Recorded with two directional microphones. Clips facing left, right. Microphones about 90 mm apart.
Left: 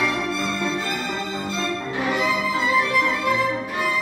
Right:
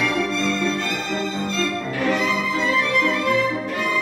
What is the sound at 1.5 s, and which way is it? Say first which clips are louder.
Music: even; 20° left (ahead or behind).